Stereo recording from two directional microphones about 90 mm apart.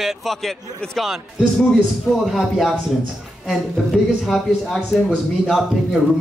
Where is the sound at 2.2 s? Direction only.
Centre (ahead or behind).